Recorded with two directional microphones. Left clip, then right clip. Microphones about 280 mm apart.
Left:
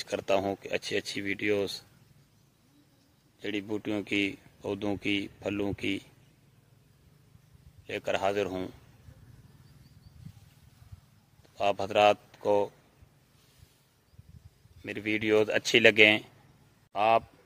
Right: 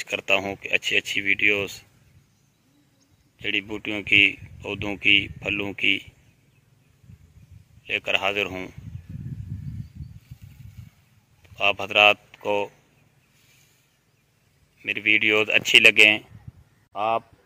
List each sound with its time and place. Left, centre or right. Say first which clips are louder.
0.1 s speech: right 5 dB; centre
3.3 s speech: right 7 dB; centre
7.8 s speech: right 6 dB; centre
11.5 s speech: right 6 dB; centre
14.8 s a man's voice: right 12 dB; centre